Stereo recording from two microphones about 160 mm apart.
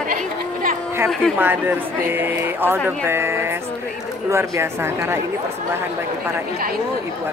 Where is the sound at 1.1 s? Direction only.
Centre (ahead or behind).